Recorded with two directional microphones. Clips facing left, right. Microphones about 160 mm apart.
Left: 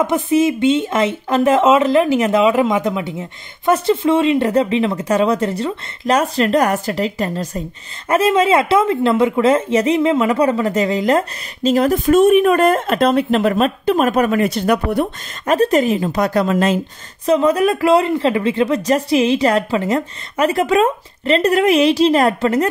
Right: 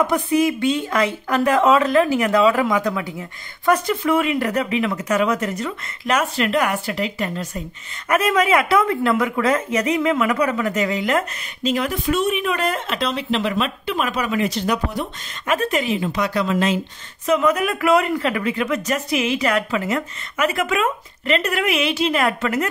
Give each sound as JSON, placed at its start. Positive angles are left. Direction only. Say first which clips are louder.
{"t": 0.0, "sound": "speech", "louder": "left 3 dB", "side_deg": 25}
{"t": 15.4, "sound": "a woman's voice", "louder": "left 7 dB", "side_deg": 40}
{"t": 17.3, "sound": "speech", "louder": "left 5 dB", "side_deg": 30}